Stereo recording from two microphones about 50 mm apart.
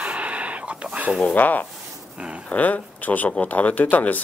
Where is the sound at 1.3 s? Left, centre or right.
Left.